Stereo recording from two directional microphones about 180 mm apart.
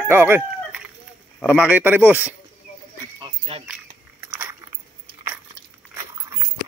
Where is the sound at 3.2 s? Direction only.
30° right (ahead or behind).